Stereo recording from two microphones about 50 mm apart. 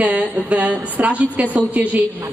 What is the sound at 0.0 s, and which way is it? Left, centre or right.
A woman's voice, right.